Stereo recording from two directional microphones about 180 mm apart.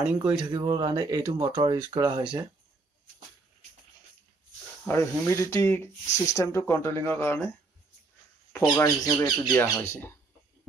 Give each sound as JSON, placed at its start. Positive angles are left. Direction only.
{"t": 0.0, "sound": "speech", "side_deg": -5}
{"t": 0.5, "sound": "speech", "side_deg": -25}
{"t": 4.8, "sound": "speech", "side_deg": 15}
{"t": 8.5, "sound": "speech", "side_deg": 20}
{"t": 9.5, "sound": "speech", "side_deg": 10}